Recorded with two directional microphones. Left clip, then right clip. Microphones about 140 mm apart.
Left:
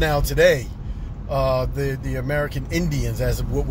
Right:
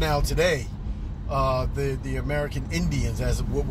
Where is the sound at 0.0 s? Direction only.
15° left (ahead or behind).